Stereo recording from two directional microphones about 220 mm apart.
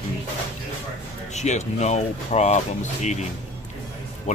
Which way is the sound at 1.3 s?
30° left (ahead or behind).